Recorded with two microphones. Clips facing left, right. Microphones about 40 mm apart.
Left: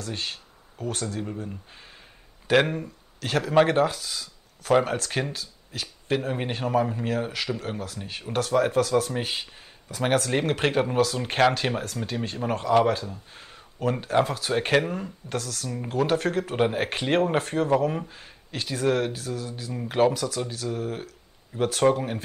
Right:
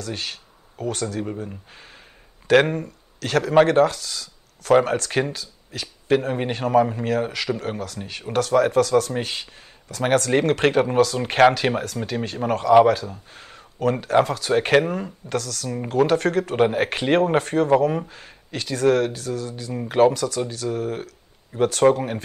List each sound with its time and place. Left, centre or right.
0.0 s speech: centre
8.1 s speech: centre
11.1 s speech: centre
12.4 s speech: centre
13.3 s a sound: centre
14.2 s speech: centre
14.5 s speech: centre
15.2 s speech: centre
16.6 s speech: centre